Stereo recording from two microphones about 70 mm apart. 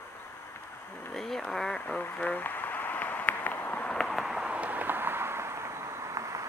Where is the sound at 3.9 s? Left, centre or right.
Centre.